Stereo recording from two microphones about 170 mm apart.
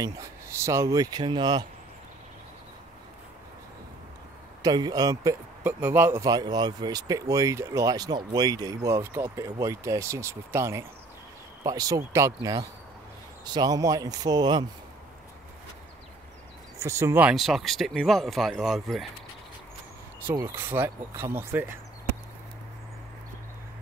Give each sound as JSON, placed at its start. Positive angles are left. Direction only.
{"t": 0.7, "sound": "speech", "side_deg": -20}
{"t": 4.6, "sound": "speech", "side_deg": -25}
{"t": 5.6, "sound": "speech", "side_deg": -10}
{"t": 16.7, "sound": "speech", "side_deg": -15}
{"t": 20.2, "sound": "speech", "side_deg": -15}